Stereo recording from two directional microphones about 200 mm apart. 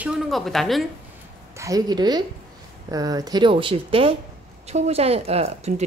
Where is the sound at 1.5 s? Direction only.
15° right (ahead or behind); by 5.8 s 30° right (ahead or behind).